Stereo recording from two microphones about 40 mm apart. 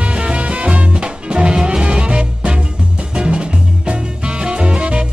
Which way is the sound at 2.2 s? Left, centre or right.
Right.